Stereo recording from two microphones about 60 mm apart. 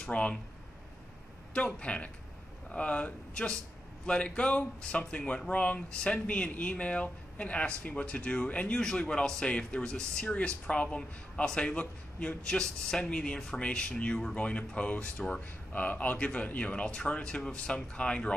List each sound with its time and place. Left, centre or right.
0.0 s speech: centre
1.5 s a man's voice: left